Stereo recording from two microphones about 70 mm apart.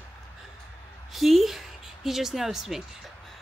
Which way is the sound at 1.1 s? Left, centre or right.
Centre.